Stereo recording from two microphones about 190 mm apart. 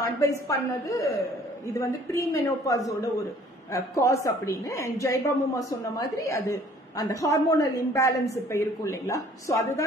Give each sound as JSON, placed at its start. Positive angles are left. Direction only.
{"t": 0.2, "sound": "a woman's voice", "side_deg": 15}